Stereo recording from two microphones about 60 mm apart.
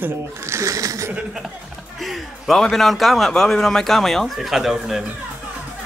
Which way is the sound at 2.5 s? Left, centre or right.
Centre.